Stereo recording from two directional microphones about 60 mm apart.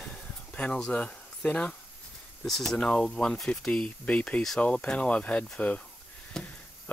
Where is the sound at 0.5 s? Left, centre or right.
Centre.